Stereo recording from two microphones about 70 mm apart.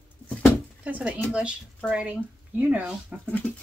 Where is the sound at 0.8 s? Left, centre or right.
Right.